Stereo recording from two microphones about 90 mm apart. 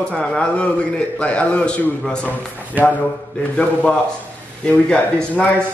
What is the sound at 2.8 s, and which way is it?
Speech, 20° right (ahead or behind).